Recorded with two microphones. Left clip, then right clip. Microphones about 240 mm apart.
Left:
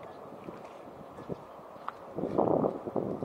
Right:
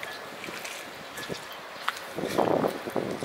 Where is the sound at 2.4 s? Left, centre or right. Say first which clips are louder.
Right 3 dB; left.